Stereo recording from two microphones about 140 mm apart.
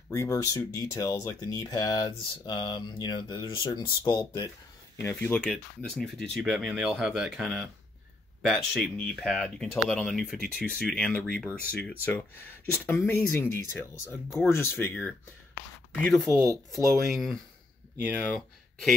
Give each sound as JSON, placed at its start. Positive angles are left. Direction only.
{"t": 0.1, "sound": "speech", "side_deg": 25}
{"t": 5.0, "sound": "speech", "side_deg": 15}
{"t": 5.4, "sound": "speech", "side_deg": 5}
{"t": 15.9, "sound": "speech", "side_deg": 5}